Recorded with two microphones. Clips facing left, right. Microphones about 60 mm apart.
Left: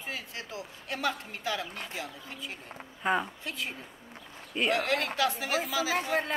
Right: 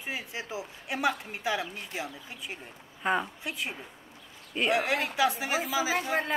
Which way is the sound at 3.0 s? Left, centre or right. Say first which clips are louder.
Even; centre.